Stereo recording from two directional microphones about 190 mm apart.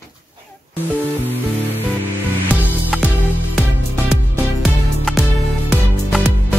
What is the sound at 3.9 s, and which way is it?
Music, centre (ahead or behind).